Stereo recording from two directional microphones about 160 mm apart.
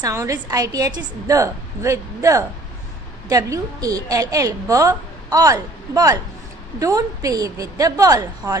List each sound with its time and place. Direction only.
0.0 s a woman's voice: 20° right (ahead or behind)